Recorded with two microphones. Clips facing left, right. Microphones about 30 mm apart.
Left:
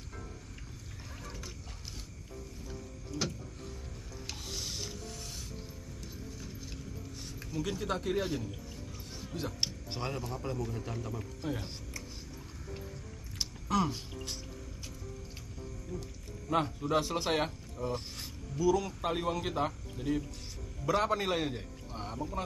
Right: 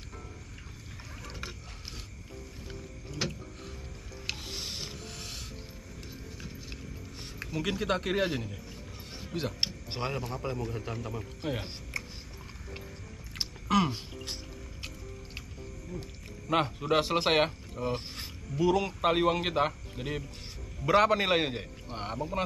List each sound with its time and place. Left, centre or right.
3.1 s speech: right
4.4 s filing: right
5.1 s a sound: right
6.4 s horse: right
7.3 s speech: right
9.6 s a man's voice: right
11.9 s a sound: right
13.8 s a sound: right
15.9 s speech: right
16.4 s speech: right
18.6 s a man's voice: right